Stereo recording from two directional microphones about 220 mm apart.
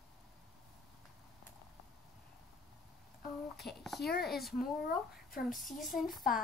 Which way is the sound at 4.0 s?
45° left (ahead or behind).